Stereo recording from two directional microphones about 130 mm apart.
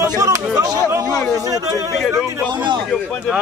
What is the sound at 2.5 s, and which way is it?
Speech, 35° right (ahead or behind).